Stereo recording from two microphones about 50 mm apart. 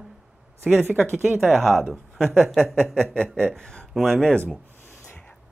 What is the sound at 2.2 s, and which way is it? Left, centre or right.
Speech, centre.